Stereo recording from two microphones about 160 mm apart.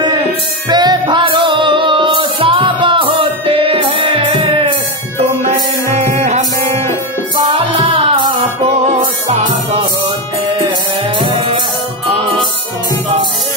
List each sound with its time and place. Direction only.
0.7 s music: 25° right (ahead or behind)
5.9 s music: 45° right (ahead or behind)
7.3 s music: 35° right (ahead or behind)
11.1 s music: 30° right (ahead or behind)